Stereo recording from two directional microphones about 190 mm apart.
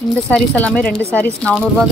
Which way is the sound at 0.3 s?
5° left (ahead or behind).